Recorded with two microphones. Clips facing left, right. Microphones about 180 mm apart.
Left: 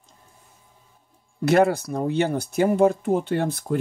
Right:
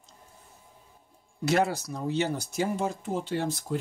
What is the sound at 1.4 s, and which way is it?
Speech, 55° left (ahead or behind).